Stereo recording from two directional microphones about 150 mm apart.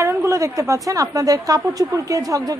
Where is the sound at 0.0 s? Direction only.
20° right (ahead or behind).